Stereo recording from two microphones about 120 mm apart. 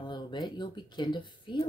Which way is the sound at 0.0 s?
40° left (ahead or behind).